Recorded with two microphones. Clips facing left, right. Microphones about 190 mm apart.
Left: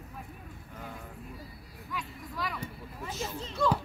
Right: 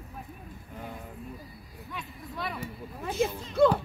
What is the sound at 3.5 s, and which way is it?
Music, 55° right (ahead or behind).